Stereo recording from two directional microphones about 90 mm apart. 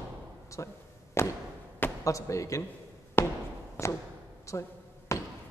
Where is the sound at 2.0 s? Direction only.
35° left (ahead or behind).